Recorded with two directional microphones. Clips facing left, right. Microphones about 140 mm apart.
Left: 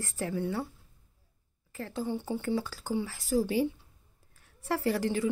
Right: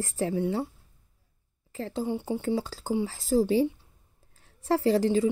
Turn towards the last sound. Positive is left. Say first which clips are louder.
# right 6 dB
turn(degrees=-25)  # may be behind; listen again after turning